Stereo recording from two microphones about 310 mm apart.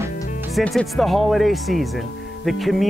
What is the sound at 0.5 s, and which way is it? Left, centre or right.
Speech, centre.